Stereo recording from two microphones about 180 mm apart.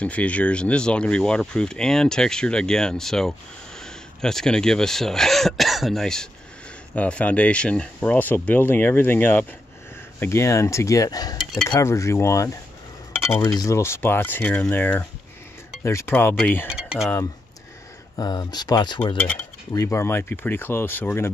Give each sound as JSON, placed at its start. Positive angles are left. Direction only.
{"t": 0.0, "sound": "speech", "side_deg": 5}
{"t": 11.3, "sound": "dishes", "side_deg": 0}
{"t": 11.7, "sound": "speech", "side_deg": 15}
{"t": 16.6, "sound": "speech", "side_deg": -5}
{"t": 18.1, "sound": "speech", "side_deg": 20}